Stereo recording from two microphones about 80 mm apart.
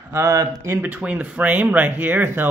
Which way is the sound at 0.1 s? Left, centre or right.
Right.